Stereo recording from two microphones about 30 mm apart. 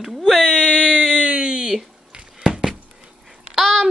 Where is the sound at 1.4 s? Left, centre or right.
Right.